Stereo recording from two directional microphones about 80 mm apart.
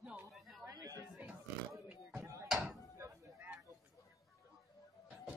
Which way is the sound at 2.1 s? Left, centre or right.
Right.